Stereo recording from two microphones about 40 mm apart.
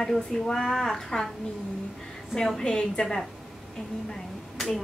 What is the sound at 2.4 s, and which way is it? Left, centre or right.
Speech, centre.